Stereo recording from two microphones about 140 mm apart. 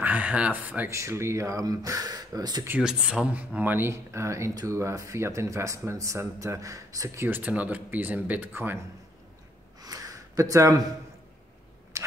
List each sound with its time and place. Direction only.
0.0 s speech: 10° right (ahead or behind); by 2.6 s 30° right (ahead or behind)
2.8 s speech: 5° right (ahead or behind)
9.8 s a sound: 25° right (ahead or behind)